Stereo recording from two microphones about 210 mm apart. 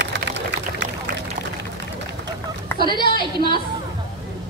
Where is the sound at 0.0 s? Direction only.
55° right (ahead or behind).